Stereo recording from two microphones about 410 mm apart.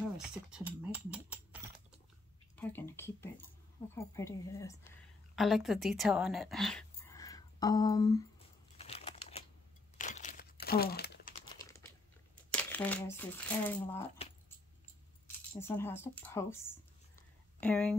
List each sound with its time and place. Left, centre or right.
0.2 s a woman's voice: centre
8.7 s crumpling: centre
12.7 s speech: centre
15.2 s a sound: centre